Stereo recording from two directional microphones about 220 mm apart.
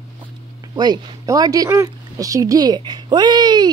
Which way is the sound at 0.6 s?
20° right (ahead or behind).